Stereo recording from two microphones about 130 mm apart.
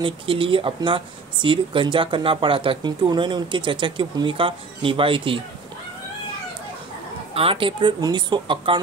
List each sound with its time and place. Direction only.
0.0 s speech: 40° right (ahead or behind)
7.3 s speech: 45° right (ahead or behind)